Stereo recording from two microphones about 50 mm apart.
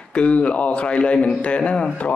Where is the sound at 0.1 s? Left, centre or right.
Left.